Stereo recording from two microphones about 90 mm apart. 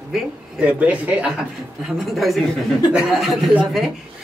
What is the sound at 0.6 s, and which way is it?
Speech, 15° right (ahead or behind).